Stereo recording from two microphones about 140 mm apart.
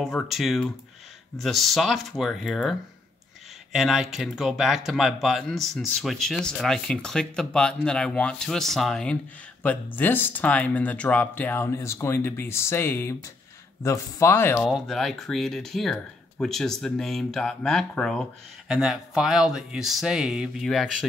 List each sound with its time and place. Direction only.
0.0 s speech: centre (ahead or behind)
3.7 s speech: 5° right (ahead or behind); by 14.7 s 15° left (ahead or behind)
14.7 s speech: centre (ahead or behind)